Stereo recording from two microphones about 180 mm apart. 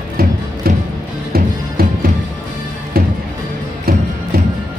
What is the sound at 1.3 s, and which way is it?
Music, 55° right (ahead or behind).